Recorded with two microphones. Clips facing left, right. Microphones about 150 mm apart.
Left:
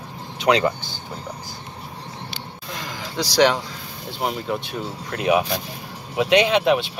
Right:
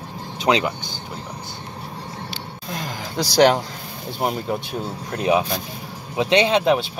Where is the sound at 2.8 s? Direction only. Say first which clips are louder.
Right 2 dB; 50° right (ahead or behind).